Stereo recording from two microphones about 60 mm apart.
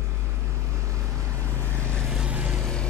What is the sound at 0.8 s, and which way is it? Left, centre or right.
Vehicle, right.